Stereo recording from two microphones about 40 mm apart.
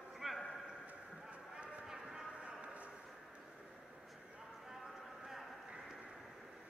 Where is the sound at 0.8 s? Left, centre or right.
Right.